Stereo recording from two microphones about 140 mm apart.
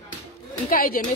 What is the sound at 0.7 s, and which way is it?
Speech, 90° left.